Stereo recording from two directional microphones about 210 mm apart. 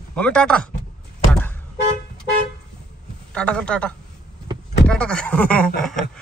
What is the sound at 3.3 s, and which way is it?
Speech, 5° left (ahead or behind).